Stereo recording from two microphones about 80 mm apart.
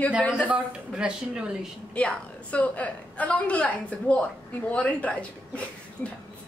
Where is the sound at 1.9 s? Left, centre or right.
Centre.